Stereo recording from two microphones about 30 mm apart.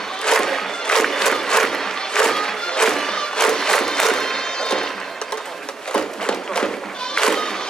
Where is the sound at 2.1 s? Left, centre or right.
Centre.